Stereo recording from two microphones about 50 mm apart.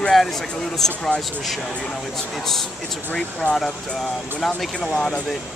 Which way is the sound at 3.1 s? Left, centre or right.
Left.